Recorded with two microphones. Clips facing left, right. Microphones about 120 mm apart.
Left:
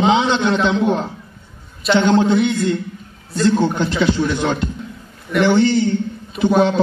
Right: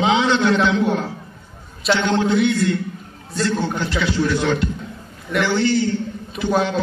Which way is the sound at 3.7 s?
25° left (ahead or behind).